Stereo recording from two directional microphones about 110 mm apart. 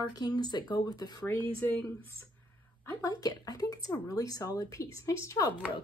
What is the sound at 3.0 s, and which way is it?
Speech, 35° left (ahead or behind).